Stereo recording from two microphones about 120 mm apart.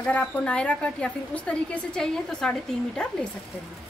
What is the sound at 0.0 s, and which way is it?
A woman's voice, 10° left (ahead or behind).